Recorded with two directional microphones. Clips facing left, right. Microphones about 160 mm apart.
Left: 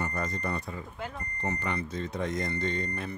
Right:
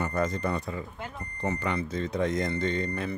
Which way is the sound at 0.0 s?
90° right.